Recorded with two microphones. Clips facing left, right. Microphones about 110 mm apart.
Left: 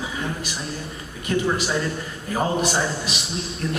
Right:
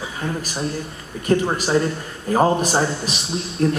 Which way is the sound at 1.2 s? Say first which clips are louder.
Right 4 dB; 40° right (ahead or behind).